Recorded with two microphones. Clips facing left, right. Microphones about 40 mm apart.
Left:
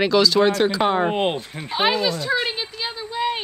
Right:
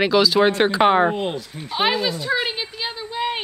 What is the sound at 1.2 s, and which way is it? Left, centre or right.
Speech, left.